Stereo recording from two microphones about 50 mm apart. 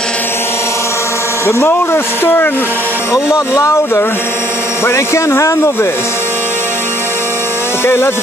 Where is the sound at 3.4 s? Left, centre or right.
Left.